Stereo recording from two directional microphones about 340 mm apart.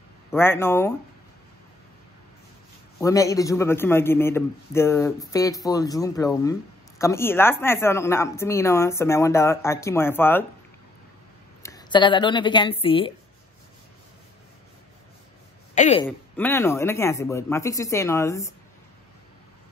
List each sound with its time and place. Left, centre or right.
0.3 s a man's voice: centre
3.0 s a man's voice: centre
11.6 s a woman's voice: centre
15.7 s speech: centre
16.1 s a man's voice: centre